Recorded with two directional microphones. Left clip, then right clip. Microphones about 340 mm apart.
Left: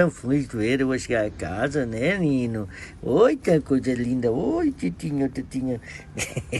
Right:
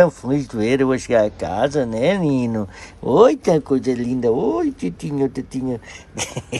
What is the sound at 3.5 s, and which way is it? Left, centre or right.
Speech, right.